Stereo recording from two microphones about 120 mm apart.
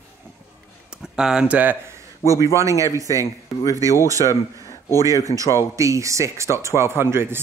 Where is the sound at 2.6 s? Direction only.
25° right (ahead or behind).